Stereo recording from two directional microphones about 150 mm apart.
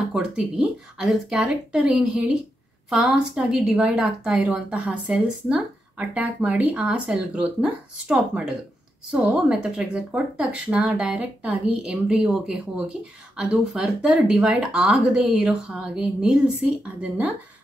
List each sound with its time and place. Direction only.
0.1 s a woman's voice: 5° right (ahead or behind)